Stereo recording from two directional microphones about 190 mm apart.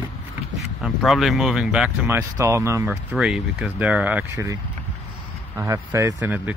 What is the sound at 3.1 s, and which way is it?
Speech, 5° right (ahead or behind).